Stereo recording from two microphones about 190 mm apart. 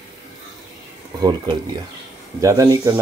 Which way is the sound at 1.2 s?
25° right (ahead or behind).